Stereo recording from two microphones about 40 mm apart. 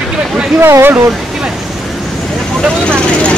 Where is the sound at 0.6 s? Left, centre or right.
Right.